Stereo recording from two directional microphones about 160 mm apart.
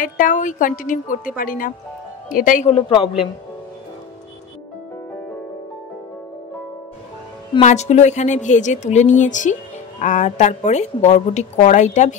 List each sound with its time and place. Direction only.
0.0 s a woman's voice: 55° left (ahead or behind)
2.7 s a woman's voice: 35° left (ahead or behind)
7.6 s speech: 45° left (ahead or behind)